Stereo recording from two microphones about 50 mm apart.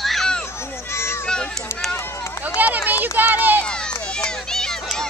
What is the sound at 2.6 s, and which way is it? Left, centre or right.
Speech, right.